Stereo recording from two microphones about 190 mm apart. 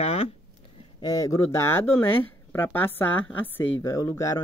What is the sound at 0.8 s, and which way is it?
Speech, 20° left (ahead or behind).